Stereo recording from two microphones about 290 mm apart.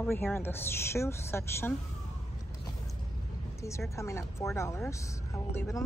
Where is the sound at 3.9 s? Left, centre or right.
Centre.